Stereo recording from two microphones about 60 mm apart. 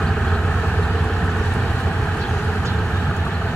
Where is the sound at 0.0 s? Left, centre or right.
Centre.